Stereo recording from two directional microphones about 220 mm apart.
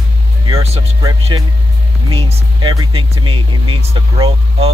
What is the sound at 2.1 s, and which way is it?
Speech, 20° right (ahead or behind).